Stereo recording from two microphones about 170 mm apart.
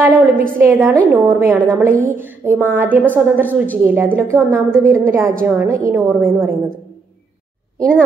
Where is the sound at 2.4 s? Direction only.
10° right (ahead or behind).